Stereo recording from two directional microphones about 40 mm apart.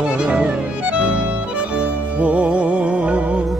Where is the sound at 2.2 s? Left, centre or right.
Right.